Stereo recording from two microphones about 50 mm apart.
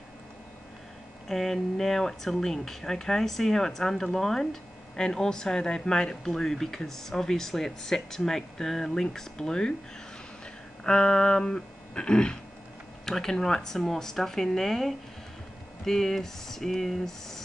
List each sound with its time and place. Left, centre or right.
1.3 s speech: centre
10.8 s speech: centre
13.0 s speech: centre